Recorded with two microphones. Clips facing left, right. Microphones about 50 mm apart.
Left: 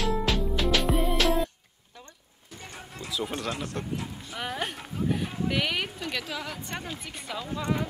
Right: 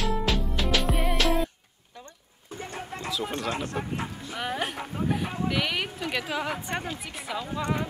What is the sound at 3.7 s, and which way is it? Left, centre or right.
A woman's voice, centre.